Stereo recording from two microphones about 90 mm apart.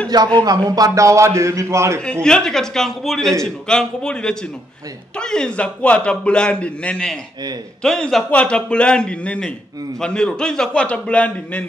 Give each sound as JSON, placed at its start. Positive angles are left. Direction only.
{"t": 0.4, "sound": "a man's voice", "side_deg": -45}
{"t": 2.2, "sound": "a man's voice", "side_deg": 5}